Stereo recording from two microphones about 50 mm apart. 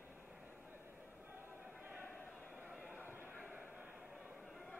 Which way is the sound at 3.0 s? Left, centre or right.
Right.